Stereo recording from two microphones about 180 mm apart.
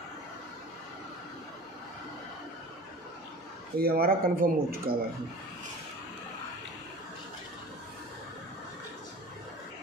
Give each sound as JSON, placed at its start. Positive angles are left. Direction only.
{"t": 3.7, "sound": "speech", "side_deg": -55}